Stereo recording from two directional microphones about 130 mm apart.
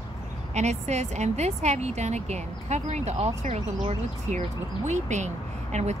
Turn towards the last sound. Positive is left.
turn(degrees=-60)  # may be behind; listen again after turning